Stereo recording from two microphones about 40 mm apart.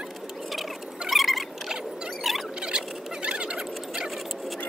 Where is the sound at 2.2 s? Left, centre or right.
Centre.